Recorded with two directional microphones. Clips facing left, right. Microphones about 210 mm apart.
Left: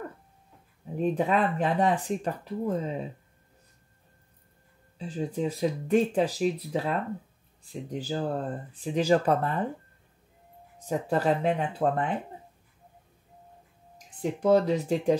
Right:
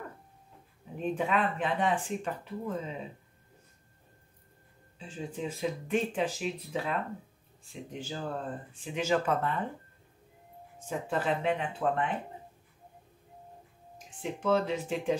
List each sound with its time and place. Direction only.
1.1 s speech: 40° left (ahead or behind)
4.9 s speech: 35° left (ahead or behind)
10.9 s speech: 40° left (ahead or behind)
13.9 s speech: 40° left (ahead or behind)